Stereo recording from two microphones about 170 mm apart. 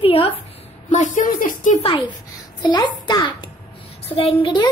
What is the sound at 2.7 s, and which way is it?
Speech, 25° left (ahead or behind).